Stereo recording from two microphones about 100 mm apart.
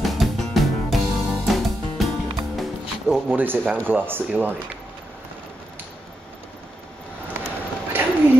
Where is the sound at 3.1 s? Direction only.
10° right (ahead or behind).